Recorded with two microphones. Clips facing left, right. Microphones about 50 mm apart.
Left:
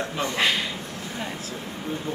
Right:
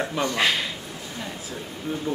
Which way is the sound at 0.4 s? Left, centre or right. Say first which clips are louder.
Even; centre.